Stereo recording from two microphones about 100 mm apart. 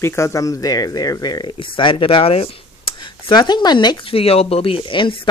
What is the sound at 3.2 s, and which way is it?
Speech, 50° left (ahead or behind).